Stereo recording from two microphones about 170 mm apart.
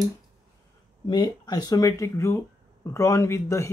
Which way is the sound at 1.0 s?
25° left (ahead or behind).